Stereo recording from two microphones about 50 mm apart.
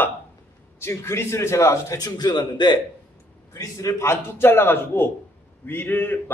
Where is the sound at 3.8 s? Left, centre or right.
Left.